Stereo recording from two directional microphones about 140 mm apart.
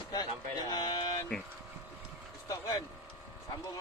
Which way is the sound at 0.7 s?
30° left (ahead or behind).